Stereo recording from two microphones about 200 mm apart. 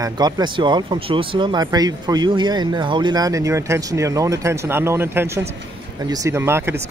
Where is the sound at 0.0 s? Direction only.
20° right (ahead or behind).